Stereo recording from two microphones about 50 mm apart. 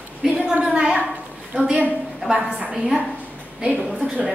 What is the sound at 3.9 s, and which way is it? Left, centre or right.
Speech, right.